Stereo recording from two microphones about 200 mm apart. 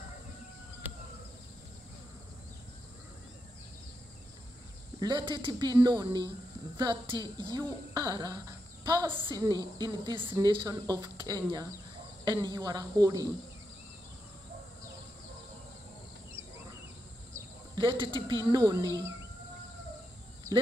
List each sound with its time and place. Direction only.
5.0 s a woman's voice: 25° right (ahead or behind)
17.3 s speech: 25° right (ahead or behind)